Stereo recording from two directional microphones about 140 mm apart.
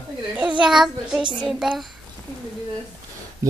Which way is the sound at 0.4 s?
10° right (ahead or behind).